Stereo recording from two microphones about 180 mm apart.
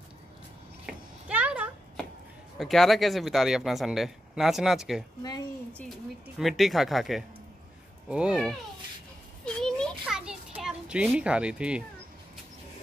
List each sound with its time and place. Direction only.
0.8 s a sound: 10° right (ahead or behind)
2.5 s speech: centre (ahead or behind)
9.4 s children playing: 5° left (ahead or behind)